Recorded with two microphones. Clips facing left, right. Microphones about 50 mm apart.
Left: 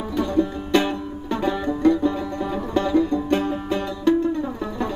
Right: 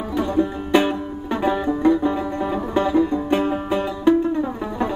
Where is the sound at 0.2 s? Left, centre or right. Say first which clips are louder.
Right 1 dB; centre.